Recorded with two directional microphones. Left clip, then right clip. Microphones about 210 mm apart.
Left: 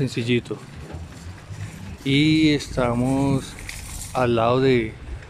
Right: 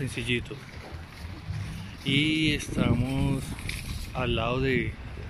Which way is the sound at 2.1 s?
15° left (ahead or behind).